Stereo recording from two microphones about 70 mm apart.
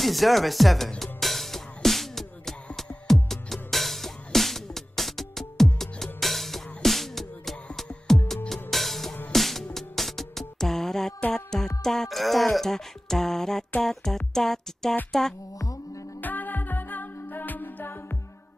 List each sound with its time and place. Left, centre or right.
0.0 s music: centre
11.8 s speech: centre
15.6 s music: left
16.2 s music: left